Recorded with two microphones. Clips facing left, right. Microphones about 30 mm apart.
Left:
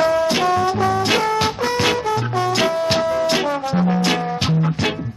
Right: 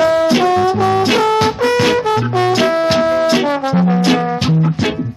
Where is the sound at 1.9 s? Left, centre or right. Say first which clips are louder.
Right 6 dB; right.